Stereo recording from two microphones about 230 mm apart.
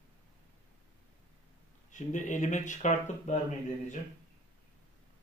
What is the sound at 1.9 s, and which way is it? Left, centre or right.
Speech, left.